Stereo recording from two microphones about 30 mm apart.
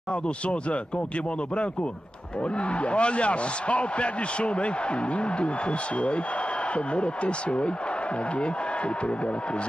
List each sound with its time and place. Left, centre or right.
0.1 s speech: left
2.7 s speech: left